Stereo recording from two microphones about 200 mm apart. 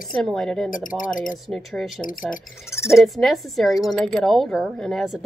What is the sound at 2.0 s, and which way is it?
Speech, 45° left (ahead or behind).